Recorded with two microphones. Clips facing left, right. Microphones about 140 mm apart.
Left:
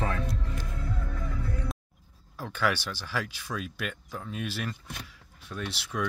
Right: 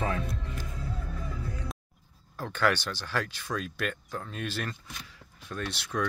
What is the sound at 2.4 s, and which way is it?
Speech, 5° left (ahead or behind).